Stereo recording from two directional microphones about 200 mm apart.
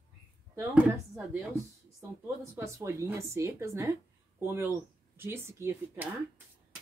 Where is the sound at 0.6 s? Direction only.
5° right (ahead or behind).